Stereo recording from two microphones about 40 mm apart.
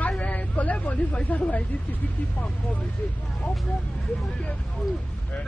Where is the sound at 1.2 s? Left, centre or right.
Left.